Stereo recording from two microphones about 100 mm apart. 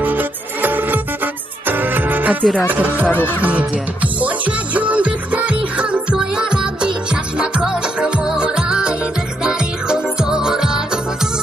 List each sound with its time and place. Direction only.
0.0 s music: 20° right (ahead or behind)
2.4 s music: 10° left (ahead or behind)
2.7 s speech: 15° right (ahead or behind)
3.3 s music: 15° right (ahead or behind)